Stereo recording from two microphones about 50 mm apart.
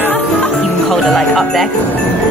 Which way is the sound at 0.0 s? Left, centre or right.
Left.